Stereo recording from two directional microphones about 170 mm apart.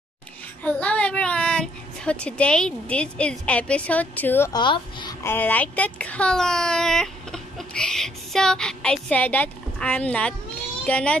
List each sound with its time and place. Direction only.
0.7 s a child's voice: 10° left (ahead or behind)
4.5 s speech: 25° left (ahead or behind)
5.2 s a child's voice: 10° left (ahead or behind)